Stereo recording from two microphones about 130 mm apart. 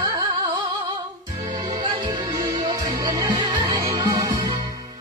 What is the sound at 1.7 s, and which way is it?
Music, 35° right (ahead or behind).